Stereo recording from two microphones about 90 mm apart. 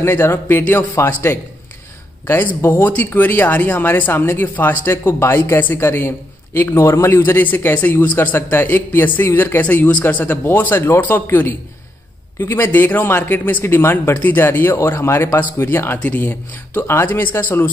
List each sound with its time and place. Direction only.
0.0 s speech: 25° left (ahead or behind)